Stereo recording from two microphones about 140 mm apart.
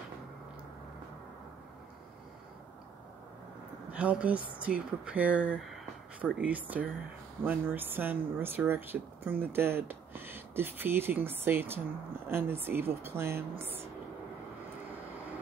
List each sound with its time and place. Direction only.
3.9 s speech: 10° right (ahead or behind)